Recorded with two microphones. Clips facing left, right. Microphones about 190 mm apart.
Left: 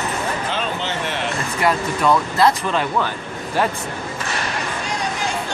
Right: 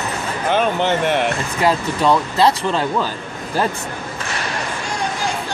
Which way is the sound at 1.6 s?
30° right (ahead or behind).